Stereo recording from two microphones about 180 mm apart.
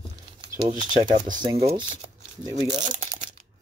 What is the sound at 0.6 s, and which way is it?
Speech, 25° right (ahead or behind).